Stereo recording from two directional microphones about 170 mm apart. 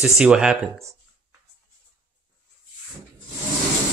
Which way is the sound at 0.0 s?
5° right (ahead or behind).